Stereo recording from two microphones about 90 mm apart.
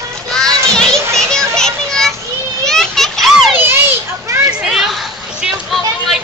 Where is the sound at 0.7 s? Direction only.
5° left (ahead or behind).